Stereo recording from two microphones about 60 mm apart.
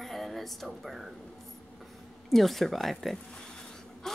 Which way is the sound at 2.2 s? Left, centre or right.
Centre.